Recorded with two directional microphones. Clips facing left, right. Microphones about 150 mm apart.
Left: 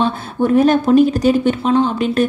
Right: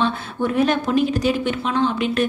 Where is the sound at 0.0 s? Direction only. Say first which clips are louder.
Left 5 dB; 40° left (ahead or behind).